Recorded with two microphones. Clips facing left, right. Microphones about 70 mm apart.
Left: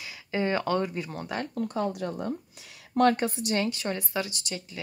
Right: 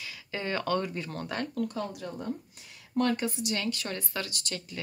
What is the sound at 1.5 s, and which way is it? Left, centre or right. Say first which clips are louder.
Speech: left 3 dB; left.